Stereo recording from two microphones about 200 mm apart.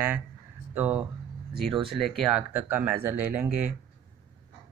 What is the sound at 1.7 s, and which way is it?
Speech, 25° right (ahead or behind).